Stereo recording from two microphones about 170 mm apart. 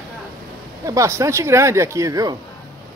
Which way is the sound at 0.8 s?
20° right (ahead or behind).